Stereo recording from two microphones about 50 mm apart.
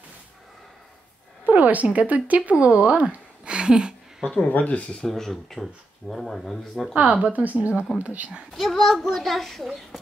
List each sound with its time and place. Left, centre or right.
1.4 s music: right
1.9 s speech: right
4.5 s speech: left
5.0 s speech: centre
7.0 s speech: right
8.5 s speech: centre